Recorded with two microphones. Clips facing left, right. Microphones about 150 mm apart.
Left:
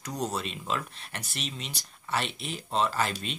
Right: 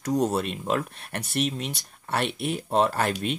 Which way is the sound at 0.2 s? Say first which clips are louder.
Right 7 dB; 50° right (ahead or behind).